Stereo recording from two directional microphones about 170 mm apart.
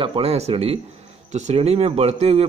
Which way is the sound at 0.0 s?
35° right (ahead or behind).